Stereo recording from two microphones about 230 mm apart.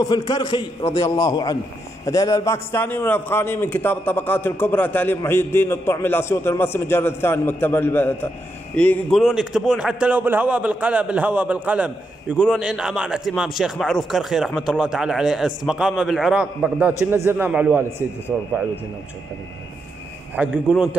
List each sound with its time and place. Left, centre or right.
0.0 s a man's voice: centre
20.3 s a man's voice: centre